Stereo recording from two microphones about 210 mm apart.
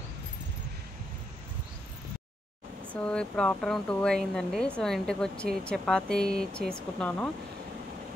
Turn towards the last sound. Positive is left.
turn(degrees=5)  # may be behind; listen again after turning